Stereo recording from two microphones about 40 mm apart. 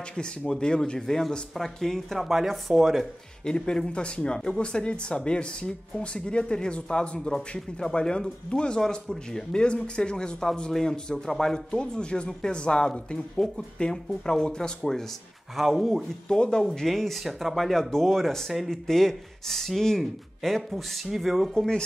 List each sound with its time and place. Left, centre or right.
0.1 s speech: left
2.1 s speech: centre
3.4 s speech: centre
7.2 s speech: centre
15.5 s speech: centre
16.3 s speech: left
16.8 s speech: centre
18.7 s speech: centre